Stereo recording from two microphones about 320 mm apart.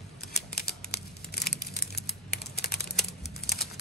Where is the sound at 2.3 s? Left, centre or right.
Left.